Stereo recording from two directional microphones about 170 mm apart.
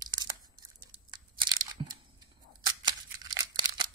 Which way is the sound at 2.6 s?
25° right (ahead or behind).